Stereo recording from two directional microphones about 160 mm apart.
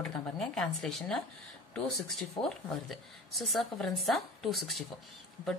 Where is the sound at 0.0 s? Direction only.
5° left (ahead or behind).